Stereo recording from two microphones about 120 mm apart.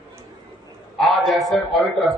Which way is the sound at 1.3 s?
Centre (ahead or behind).